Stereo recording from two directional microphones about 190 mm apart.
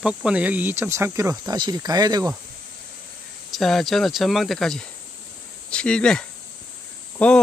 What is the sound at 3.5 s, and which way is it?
Speech, centre (ahead or behind).